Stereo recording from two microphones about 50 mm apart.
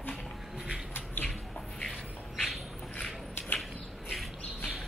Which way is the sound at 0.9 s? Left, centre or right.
Left.